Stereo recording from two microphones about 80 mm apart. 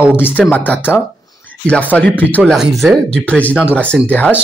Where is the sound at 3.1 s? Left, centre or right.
Centre.